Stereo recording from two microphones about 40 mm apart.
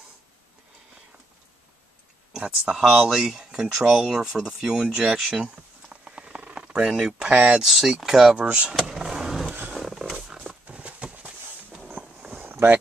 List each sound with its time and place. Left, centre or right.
2.6 s speech: centre
3.6 s speech: centre
6.0 s patter: right
6.7 s speech: centre
7.6 s speech: centre
8.4 s speech: right
8.9 s vehicle: centre
9.8 s roaring cats: centre
10.3 s a sound: right
11.1 s a sound: centre
11.9 s walk: right